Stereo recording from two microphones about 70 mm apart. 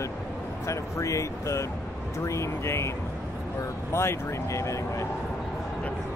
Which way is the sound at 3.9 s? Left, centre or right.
Left.